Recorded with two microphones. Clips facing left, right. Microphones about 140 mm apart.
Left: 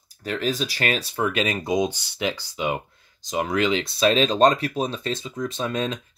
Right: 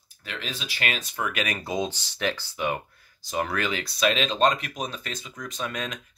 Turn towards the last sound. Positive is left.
turn(degrees=30)  # may be behind; listen again after turning